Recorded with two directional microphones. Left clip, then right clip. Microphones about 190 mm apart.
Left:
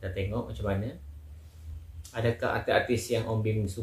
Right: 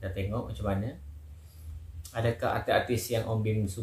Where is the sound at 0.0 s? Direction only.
5° left (ahead or behind).